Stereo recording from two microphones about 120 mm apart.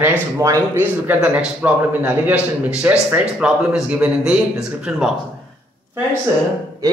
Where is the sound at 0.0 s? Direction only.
15° right (ahead or behind).